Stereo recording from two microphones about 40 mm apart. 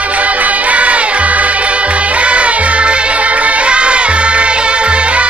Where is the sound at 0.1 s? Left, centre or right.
Right.